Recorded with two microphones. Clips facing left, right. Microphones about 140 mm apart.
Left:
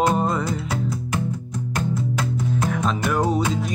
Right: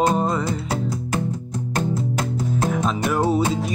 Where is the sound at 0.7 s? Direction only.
35° right (ahead or behind).